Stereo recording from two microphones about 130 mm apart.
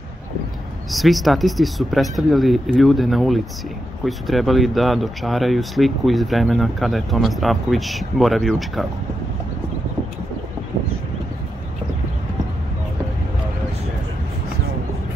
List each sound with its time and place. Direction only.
0.9 s speech: centre (ahead or behind)